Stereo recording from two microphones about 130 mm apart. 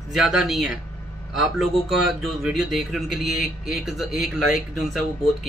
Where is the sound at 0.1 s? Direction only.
5° right (ahead or behind).